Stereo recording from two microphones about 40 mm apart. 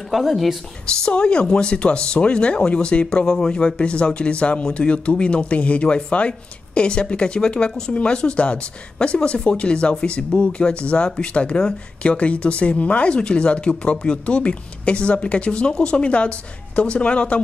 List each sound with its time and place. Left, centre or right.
0.1 s speech: centre
0.8 s speech: left